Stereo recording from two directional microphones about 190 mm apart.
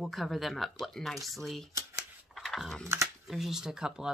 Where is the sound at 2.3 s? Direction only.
Centre (ahead or behind).